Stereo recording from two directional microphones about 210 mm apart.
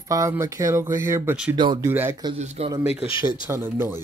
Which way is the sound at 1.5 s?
20° right (ahead or behind).